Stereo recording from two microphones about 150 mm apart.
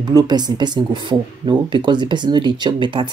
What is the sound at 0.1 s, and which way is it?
Speech, 25° right (ahead or behind).